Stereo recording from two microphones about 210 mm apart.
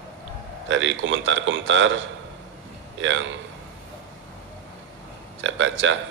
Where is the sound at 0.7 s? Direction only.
65° right (ahead or behind).